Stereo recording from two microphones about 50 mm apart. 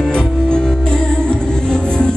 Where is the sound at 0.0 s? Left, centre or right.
Centre.